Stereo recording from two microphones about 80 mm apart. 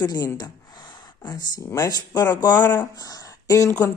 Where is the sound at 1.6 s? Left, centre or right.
Left.